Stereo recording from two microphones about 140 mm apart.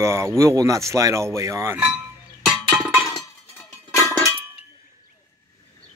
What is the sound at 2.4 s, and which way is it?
Music, 5° right (ahead or behind).